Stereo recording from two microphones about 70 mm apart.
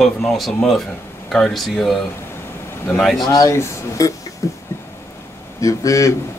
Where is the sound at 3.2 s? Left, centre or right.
Left.